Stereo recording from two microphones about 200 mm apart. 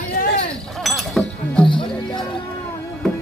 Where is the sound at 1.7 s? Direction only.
25° left (ahead or behind).